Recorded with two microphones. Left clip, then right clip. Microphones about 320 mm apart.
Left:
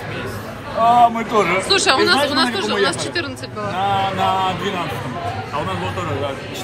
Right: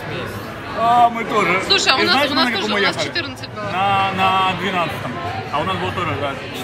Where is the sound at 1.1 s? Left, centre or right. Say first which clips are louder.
Left 1 dB; left.